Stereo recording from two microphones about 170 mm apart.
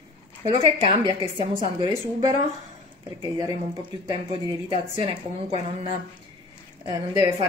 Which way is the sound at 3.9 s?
30° right (ahead or behind).